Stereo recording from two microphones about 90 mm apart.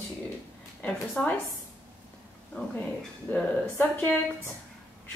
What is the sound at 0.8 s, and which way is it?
Speech, 15° left (ahead or behind).